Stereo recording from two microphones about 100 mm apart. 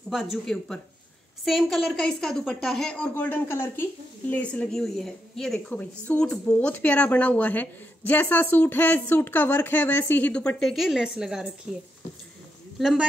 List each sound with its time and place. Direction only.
0.1 s a woman's voice: 5° right (ahead or behind)
3.0 s speech: 20° left (ahead or behind)
4.3 s a woman's voice: 15° left (ahead or behind)
10.6 s a woman's voice: centre (ahead or behind)
12.7 s a man's voice: 5° right (ahead or behind)